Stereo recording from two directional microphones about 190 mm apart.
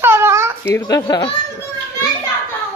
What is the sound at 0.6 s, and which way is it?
Speech, 20° left (ahead or behind).